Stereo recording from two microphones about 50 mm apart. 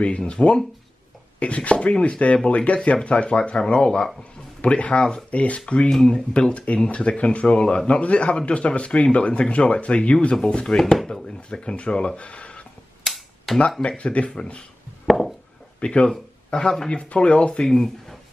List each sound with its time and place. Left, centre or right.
0.0 s a man's voice: left
5.9 s a man's voice: centre
10.8 s speech: centre
11.2 s a man's voice: left
12.2 s a sound: left
13.0 s cap gun: centre
13.8 s a man's voice: left
15.0 s a sound: centre
15.8 s a man's voice: left
16.4 s a sound: centre
16.9 s a man's voice: left
17.6 s speech: centre